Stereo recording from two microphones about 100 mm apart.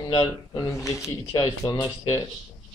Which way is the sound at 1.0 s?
35° left (ahead or behind).